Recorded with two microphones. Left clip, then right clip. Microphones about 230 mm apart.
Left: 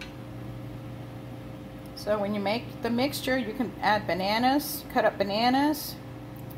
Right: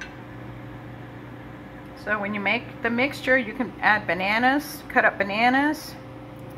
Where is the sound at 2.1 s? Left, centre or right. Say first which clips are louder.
Right 3 dB; centre.